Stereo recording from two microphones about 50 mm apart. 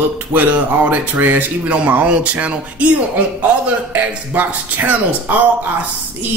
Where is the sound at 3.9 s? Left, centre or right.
Right.